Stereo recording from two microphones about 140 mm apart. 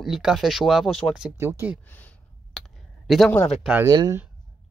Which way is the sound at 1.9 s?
10° left (ahead or behind).